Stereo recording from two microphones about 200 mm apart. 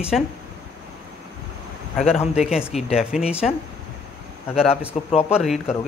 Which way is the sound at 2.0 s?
30° left (ahead or behind).